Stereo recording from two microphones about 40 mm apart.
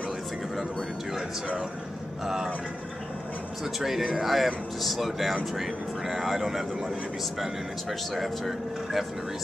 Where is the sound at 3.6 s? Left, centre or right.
Centre.